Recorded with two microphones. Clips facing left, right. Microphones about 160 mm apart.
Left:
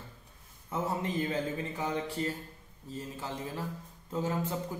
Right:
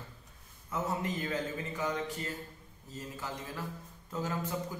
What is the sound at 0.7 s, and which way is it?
A man's voice, 30° left (ahead or behind).